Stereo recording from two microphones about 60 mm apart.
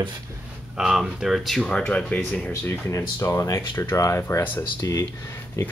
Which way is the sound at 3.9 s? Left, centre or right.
Left.